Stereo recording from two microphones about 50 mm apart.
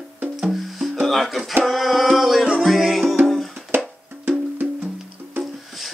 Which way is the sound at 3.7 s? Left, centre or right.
Right.